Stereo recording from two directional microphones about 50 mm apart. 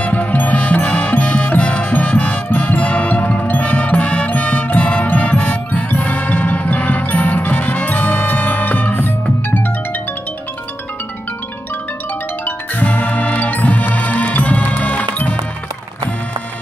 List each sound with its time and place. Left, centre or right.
0.0 s music: left
12.4 s music: left